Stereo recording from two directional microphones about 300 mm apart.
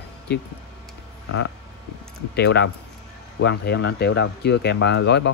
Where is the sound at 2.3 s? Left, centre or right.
Left.